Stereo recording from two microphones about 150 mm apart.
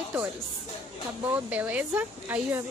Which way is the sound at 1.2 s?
10° right (ahead or behind).